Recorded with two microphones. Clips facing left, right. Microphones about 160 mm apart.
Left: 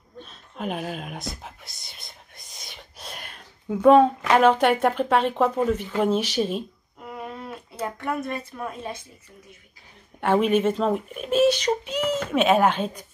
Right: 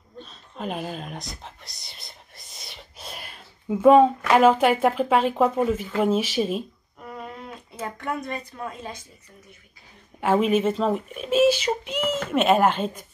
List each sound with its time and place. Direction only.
0.2 s a sound: centre (ahead or behind)
1.4 s whispering: centre (ahead or behind)
4.3 s speech: 5° right (ahead or behind)
7.7 s speech: 5° left (ahead or behind)
10.2 s speech: centre (ahead or behind)